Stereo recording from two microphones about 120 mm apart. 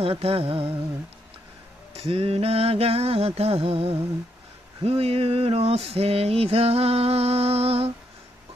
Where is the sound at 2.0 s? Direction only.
55° right (ahead or behind).